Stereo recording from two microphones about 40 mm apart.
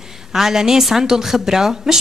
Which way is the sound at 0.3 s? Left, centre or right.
Centre.